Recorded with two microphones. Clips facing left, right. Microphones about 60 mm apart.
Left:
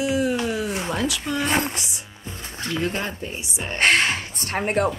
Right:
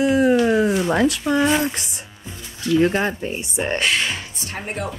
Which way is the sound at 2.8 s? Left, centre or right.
Right.